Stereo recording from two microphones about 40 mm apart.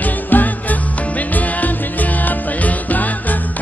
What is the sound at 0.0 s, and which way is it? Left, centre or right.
Music, left.